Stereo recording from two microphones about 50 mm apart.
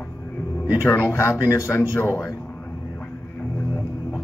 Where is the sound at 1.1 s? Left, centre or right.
Left.